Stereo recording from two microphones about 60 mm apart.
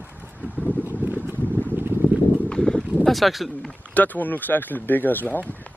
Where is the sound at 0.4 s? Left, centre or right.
Right.